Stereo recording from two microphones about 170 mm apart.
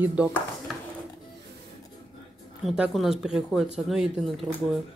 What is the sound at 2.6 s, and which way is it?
Speech, centre (ahead or behind).